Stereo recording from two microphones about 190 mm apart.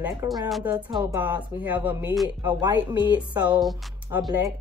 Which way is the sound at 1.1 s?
10° right (ahead or behind).